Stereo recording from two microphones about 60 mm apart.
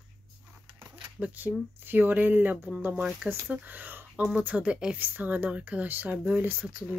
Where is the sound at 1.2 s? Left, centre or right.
Right.